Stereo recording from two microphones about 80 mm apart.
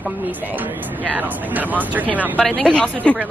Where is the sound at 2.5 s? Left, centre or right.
Centre.